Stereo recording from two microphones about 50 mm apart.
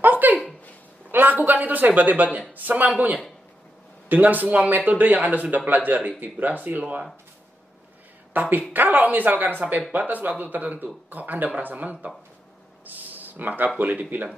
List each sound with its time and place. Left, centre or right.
0.0 s a sound: right
1.1 s a man's voice: right
6.8 s speech: right
8.3 s speech: right
12.8 s a sound: right
14.1 s speech: right